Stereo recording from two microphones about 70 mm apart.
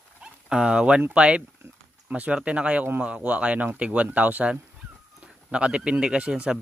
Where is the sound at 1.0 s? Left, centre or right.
Centre.